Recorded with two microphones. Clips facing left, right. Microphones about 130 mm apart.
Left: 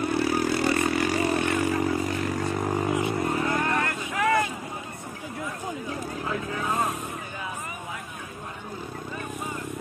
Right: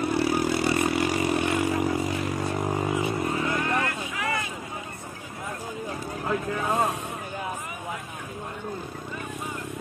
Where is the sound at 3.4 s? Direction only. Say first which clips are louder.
Left 1 dB; 45° left (ahead or behind).